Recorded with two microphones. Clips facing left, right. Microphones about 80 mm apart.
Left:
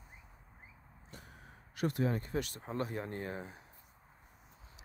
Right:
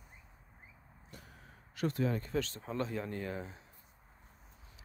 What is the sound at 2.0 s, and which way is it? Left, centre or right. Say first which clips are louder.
Speech: right 2 dB; left.